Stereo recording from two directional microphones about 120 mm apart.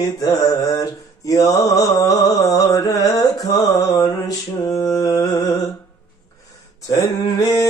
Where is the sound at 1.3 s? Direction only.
30° left (ahead or behind).